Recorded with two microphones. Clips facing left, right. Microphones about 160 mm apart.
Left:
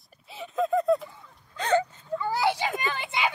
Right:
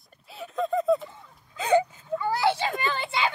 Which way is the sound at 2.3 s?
15° left (ahead or behind).